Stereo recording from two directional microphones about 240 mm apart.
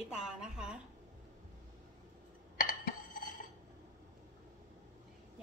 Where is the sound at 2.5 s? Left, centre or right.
Left.